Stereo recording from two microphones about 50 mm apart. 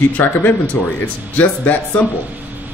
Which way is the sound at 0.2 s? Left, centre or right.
Left.